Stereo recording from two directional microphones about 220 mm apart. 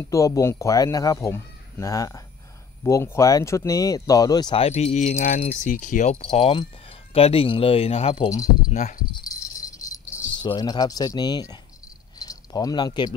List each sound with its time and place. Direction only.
0.0 s speech: 15° left (ahead or behind); by 9.2 s 30° left (ahead or behind)
9.3 s keys jangling: 15° left (ahead or behind)
12.2 s cricket: 15° left (ahead or behind)